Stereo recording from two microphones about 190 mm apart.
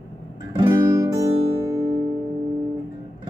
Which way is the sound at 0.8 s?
20° right (ahead or behind).